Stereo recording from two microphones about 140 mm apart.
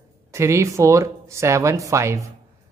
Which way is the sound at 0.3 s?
20° right (ahead or behind).